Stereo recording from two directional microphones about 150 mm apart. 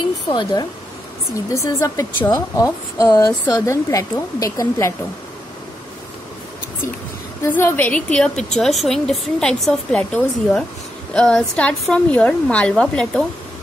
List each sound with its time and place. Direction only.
0.3 s speech: 30° left (ahead or behind)
1.5 s a woman's voice: 20° left (ahead or behind)
7.4 s a woman's voice: 15° left (ahead or behind)